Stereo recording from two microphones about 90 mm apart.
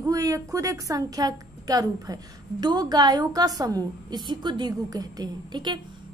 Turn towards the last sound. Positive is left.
turn(degrees=-60)  # may be behind; listen again after turning